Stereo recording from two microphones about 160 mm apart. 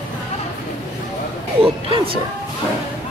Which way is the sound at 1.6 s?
35° right (ahead or behind).